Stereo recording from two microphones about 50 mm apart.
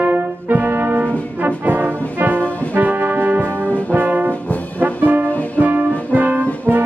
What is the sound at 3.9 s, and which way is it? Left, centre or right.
Brass instrument, right.